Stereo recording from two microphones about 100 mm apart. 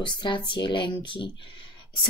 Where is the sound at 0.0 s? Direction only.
50° left (ahead or behind).